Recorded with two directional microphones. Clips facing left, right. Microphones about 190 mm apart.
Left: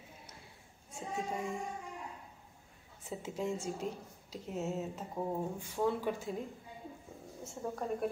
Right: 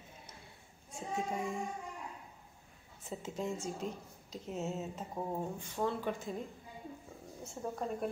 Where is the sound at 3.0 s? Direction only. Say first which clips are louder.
Left 1 dB; 10° left (ahead or behind).